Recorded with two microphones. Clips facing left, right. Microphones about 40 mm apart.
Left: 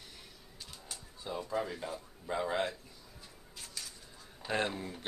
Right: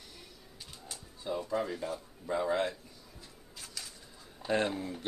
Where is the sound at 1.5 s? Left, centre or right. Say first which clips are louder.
Right 1 dB; centre.